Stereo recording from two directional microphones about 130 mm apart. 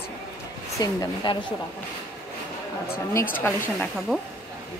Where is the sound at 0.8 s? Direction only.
30° left (ahead or behind).